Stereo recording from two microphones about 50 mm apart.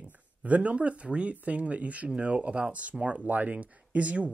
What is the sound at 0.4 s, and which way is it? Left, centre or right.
Speech, right.